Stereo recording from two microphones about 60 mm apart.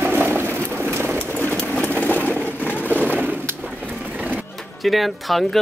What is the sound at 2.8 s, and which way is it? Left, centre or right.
Skateboard, right.